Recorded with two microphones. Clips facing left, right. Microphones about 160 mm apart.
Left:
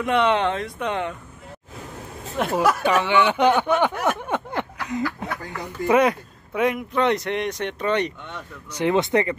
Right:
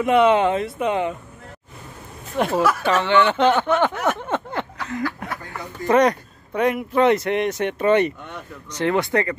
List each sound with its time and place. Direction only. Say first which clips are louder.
0.0 s speech: right 4 dB; 5° right (ahead or behind)
2.5 s speech: left 1 dB; 15° left (ahead or behind)
5.9 s speech: right 2 dB; 5° left (ahead or behind)
8.7 s speech: left 1 dB; 20° left (ahead or behind)